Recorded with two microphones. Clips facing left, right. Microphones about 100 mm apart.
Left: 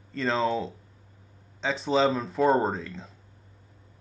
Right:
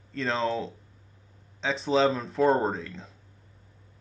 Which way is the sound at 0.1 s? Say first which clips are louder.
Left 2 dB; centre (ahead or behind).